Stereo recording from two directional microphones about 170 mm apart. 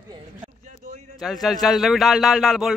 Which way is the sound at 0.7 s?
50° right (ahead or behind).